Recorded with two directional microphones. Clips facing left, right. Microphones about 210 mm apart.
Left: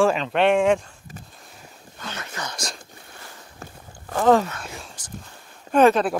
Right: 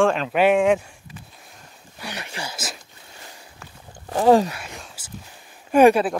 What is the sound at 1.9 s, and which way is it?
Speech, 15° right (ahead or behind).